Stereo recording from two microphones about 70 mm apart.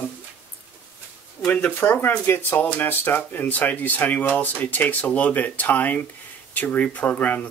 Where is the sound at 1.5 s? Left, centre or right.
Left.